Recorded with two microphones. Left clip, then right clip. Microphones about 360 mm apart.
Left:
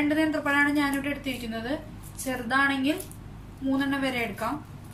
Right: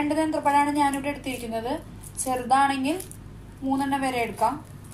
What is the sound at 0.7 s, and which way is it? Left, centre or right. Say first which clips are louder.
A woman's voice: right 3 dB; centre.